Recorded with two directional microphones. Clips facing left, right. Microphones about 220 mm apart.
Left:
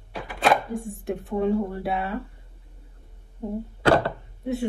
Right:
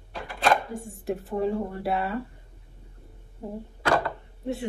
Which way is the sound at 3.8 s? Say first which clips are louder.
Left 5 dB; 25° left (ahead or behind).